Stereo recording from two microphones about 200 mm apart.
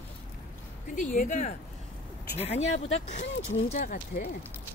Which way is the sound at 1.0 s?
40° left (ahead or behind).